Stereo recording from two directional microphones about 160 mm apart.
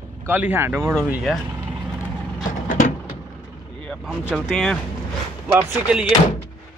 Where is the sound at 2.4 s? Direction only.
50° left (ahead or behind).